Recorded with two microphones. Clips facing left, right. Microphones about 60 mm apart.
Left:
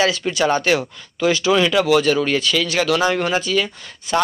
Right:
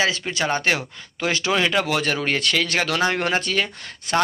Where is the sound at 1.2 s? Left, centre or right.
Right.